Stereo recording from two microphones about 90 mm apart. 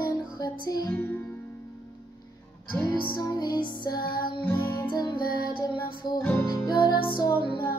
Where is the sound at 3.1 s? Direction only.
50° left (ahead or behind); by 7.2 s 65° left (ahead or behind).